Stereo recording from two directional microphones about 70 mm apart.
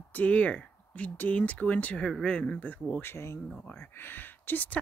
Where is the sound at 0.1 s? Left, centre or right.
Centre.